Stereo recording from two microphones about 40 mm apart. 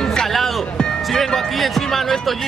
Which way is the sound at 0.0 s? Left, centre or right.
Centre.